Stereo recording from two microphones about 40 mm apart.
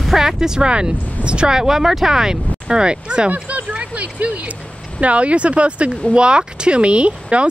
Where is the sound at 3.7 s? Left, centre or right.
Right.